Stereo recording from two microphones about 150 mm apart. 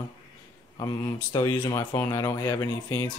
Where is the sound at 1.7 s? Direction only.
20° left (ahead or behind).